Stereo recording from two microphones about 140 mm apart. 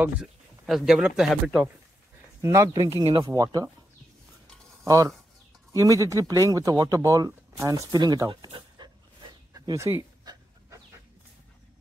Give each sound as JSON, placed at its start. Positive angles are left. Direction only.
{"t": 0.0, "sound": "speech", "side_deg": -5}
{"t": 2.4, "sound": "speech", "side_deg": -20}
{"t": 4.8, "sound": "speech", "side_deg": -25}
{"t": 9.5, "sound": "speech", "side_deg": -20}